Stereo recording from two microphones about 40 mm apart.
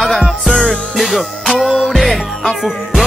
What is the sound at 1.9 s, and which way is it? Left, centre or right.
Music, centre.